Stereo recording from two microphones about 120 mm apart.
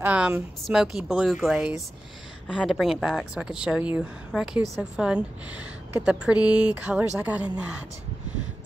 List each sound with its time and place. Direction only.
0.0 s speech: 15° right (ahead or behind)
0.7 s a woman's voice: centre (ahead or behind)